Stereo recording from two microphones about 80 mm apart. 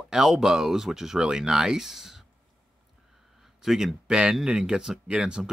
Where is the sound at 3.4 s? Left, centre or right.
Centre.